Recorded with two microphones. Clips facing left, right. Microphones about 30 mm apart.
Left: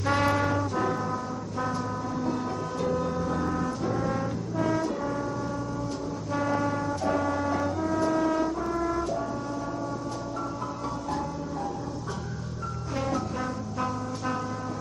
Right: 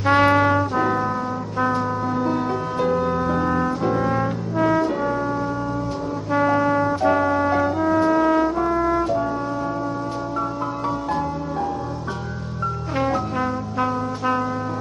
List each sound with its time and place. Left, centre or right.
0.0 s trumpet: right
1.6 s music: right
6.3 s brass instrument: right
12.9 s music: right